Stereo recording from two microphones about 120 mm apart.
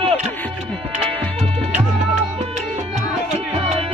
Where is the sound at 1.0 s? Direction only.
50° right (ahead or behind).